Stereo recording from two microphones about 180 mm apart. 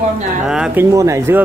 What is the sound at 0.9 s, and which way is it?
Speech, 15° right (ahead or behind).